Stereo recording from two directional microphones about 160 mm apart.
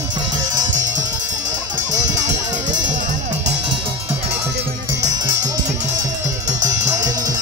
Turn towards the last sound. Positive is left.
turn(degrees=-20)  # may be behind; listen again after turning